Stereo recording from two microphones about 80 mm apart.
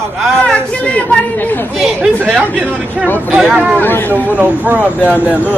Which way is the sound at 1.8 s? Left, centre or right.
Centre.